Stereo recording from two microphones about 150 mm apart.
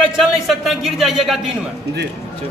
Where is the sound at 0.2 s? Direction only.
Centre (ahead or behind).